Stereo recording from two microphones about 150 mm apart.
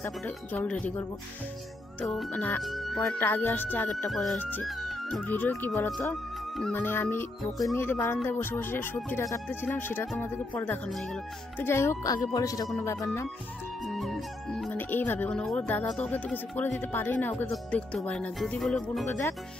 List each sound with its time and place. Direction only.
0.0 s speech: 10° left (ahead or behind)
2.6 s speech: centre (ahead or behind)
3.2 s speech: 15° left (ahead or behind)
4.1 s speech: centre (ahead or behind)
4.4 s speech: 10° left (ahead or behind)
4.6 s music: centre (ahead or behind)
5.2 s speech: 10° left (ahead or behind)
6.7 s speech: 15° left (ahead or behind)
13.8 s speech: centre (ahead or behind)